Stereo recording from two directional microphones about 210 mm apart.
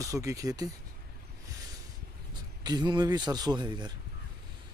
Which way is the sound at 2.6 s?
20° right (ahead or behind).